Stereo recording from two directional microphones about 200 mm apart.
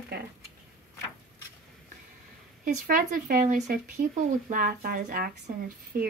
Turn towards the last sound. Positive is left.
turn(degrees=-50)  # may be behind; listen again after turning